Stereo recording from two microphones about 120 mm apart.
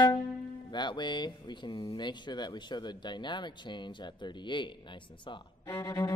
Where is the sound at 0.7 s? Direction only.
40° left (ahead or behind).